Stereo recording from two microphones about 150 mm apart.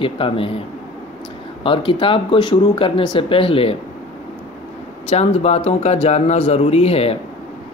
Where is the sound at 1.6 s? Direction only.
35° left (ahead or behind).